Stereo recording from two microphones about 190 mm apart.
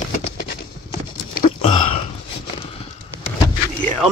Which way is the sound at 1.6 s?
30° left (ahead or behind).